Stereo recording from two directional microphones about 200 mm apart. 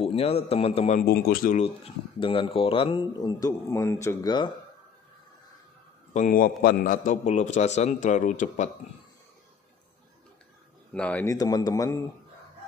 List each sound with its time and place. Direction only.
0.0 s speech: 30° left (ahead or behind)
1.0 s speech: 50° left (ahead or behind)
2.1 s speech: 25° left (ahead or behind)
6.1 s speech: 40° left (ahead or behind)
7.1 s speech: 35° left (ahead or behind)
10.9 s a man's voice: 5° left (ahead or behind)
11.3 s a man's voice: 20° left (ahead or behind)